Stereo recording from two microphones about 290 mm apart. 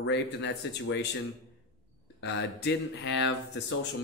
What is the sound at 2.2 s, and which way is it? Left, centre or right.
Speech, left.